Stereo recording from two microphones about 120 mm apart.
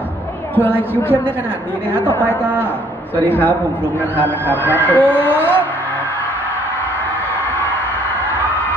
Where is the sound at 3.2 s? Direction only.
15° left (ahead or behind).